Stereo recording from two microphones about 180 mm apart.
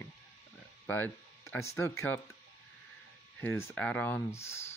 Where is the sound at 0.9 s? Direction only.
10° left (ahead or behind).